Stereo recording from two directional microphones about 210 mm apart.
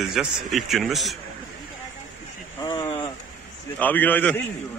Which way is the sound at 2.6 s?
20° left (ahead or behind).